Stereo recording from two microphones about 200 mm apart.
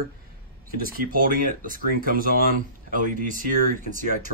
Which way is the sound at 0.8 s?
45° right (ahead or behind).